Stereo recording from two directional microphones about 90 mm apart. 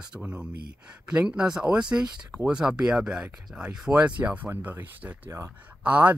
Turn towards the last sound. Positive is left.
turn(degrees=-15)  # may be behind; listen again after turning